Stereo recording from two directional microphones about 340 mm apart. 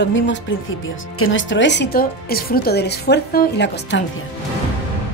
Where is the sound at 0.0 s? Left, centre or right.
Left.